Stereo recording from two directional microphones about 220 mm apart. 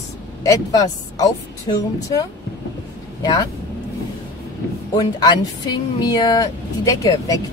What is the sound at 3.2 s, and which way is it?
Speech, 20° left (ahead or behind).